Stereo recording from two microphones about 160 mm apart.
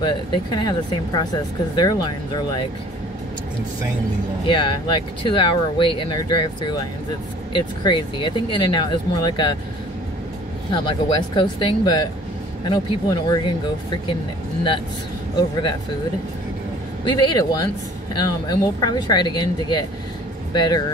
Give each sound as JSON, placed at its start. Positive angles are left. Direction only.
{"t": 0.0, "sound": "speech", "side_deg": 30}
{"t": 4.5, "sound": "speech", "side_deg": 30}
{"t": 10.7, "sound": "speech", "side_deg": 30}
{"t": 17.1, "sound": "speech", "side_deg": 25}